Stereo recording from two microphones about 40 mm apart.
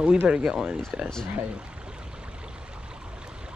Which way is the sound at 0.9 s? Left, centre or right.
Right.